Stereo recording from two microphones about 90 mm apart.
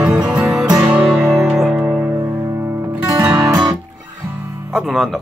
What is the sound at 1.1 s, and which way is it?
Music, 5° right (ahead or behind).